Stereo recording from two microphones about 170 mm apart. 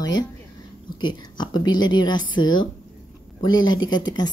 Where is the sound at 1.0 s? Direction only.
25° left (ahead or behind).